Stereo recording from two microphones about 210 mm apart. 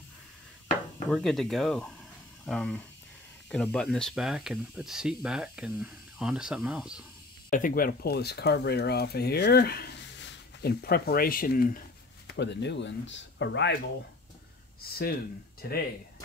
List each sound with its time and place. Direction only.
1.1 s speech: centre (ahead or behind)
7.5 s speech: 40° left (ahead or behind)
12.4 s speech: 55° left (ahead or behind)
14.8 s speech: 45° left (ahead or behind)